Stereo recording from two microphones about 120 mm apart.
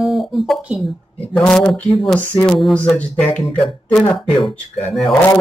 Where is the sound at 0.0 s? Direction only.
Centre (ahead or behind).